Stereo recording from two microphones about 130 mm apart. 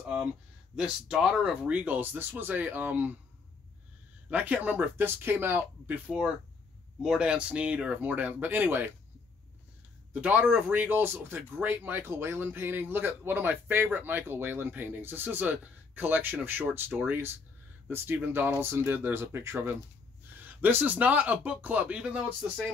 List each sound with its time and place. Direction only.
0.7 s speech: 5° right (ahead or behind)
4.3 s speech: 10° right (ahead or behind)
10.2 s speech: 10° right (ahead or behind)